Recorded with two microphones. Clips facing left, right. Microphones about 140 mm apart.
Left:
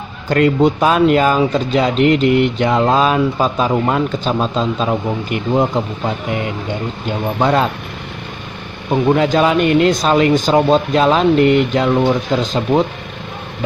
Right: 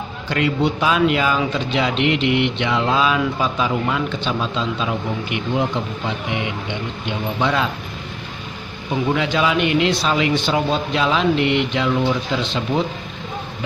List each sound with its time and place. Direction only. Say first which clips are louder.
0.3 s speech: left 7 dB; 45° left (ahead or behind)
8.9 s speech: left 7 dB; 45° left (ahead or behind)